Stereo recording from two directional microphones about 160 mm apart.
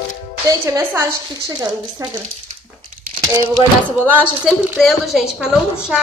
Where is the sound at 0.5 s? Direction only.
20° right (ahead or behind).